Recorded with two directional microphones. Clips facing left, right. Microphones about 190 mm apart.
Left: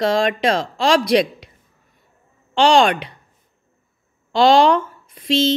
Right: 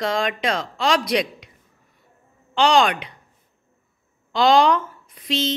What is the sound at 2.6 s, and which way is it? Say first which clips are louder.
Mantra: left 3 dB; 30° left (ahead or behind).